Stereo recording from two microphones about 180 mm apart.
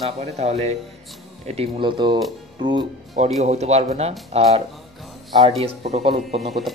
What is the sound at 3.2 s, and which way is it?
Speech, 40° right (ahead or behind).